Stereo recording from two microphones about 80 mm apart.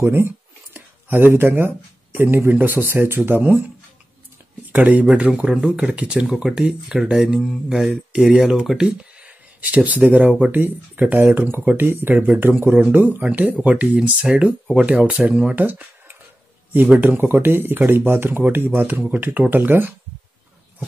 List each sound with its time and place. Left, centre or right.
0.0 s speech: right
0.7 s a sound: right
2.1 s speech: right
5.5 s speech: centre
5.9 s speech: centre